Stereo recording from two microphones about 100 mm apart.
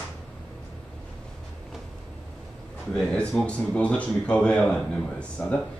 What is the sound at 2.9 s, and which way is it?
A man's voice, 10° left (ahead or behind).